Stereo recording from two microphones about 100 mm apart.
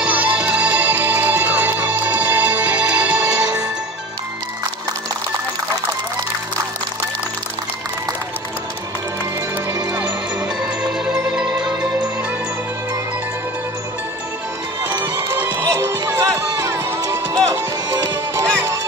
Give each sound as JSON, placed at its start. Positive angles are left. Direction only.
{"t": 0.0, "sound": "music", "side_deg": -15}
{"t": 10.8, "sound": "music", "side_deg": -10}
{"t": 14.9, "sound": "music", "side_deg": -35}